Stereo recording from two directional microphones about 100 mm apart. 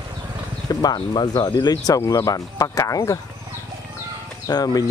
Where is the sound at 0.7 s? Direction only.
40° left (ahead or behind).